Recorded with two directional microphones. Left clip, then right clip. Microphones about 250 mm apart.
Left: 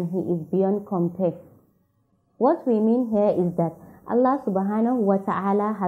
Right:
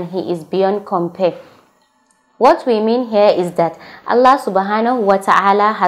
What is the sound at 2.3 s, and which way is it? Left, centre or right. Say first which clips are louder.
Speech: right 10 dB; right.